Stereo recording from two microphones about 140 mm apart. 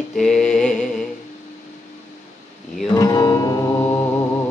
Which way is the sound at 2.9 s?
25° left (ahead or behind).